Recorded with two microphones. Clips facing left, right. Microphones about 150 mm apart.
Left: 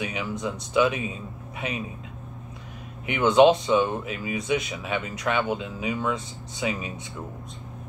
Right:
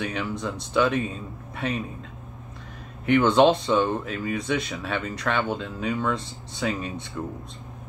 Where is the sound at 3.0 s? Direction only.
10° left (ahead or behind).